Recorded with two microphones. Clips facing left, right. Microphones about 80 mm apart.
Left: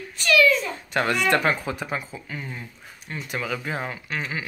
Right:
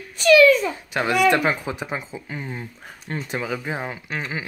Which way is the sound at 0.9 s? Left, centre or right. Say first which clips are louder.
Right 3 dB; centre.